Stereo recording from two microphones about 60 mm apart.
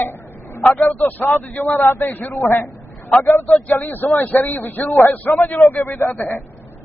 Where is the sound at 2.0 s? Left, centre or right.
Left.